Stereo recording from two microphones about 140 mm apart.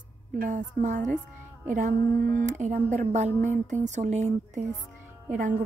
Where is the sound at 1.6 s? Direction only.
65° right (ahead or behind).